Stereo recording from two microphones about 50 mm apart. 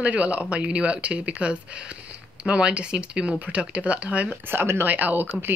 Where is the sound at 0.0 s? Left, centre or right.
Right.